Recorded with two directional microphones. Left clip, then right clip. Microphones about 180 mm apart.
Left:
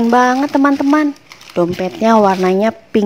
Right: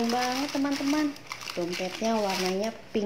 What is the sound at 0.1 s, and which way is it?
Speech, 40° left (ahead or behind).